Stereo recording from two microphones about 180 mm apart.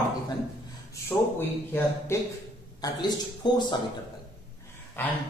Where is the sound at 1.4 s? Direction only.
15° left (ahead or behind).